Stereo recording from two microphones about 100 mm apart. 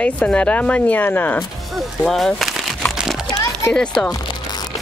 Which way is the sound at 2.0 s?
5° left (ahead or behind).